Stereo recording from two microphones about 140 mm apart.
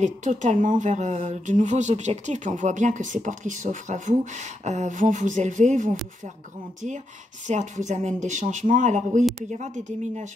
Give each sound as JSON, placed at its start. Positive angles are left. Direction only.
{"t": 0.0, "sound": "speech", "side_deg": -60}
{"t": 7.4, "sound": "speech", "side_deg": -60}